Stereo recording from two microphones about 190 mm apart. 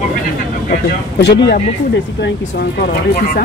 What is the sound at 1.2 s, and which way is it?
Speech, 60° left (ahead or behind).